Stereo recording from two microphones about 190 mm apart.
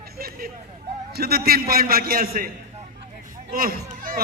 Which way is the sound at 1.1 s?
55° right (ahead or behind).